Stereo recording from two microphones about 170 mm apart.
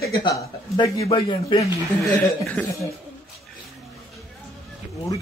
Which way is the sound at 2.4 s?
10° left (ahead or behind).